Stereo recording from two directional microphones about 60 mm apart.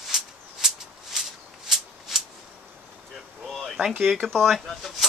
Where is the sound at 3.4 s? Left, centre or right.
Centre.